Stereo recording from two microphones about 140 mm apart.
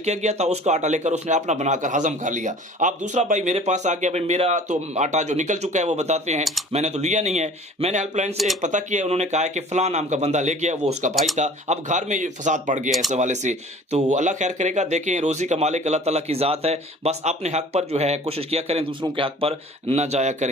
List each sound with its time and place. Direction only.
0.0 s speech: 55° right (ahead or behind)